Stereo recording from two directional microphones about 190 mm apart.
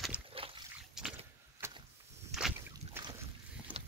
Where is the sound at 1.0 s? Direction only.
5° right (ahead or behind).